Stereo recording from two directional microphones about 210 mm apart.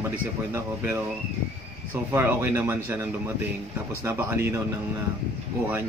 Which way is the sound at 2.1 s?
10° right (ahead or behind).